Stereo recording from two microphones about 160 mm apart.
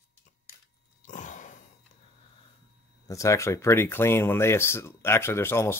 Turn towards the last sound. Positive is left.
turn(degrees=15)  # may be behind; listen again after turning